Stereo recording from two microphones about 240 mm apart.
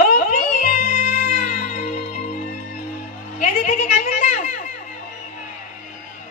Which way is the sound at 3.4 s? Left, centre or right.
Left.